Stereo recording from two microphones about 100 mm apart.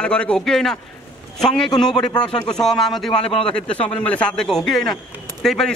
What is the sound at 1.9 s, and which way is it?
Speech, 45° left (ahead or behind).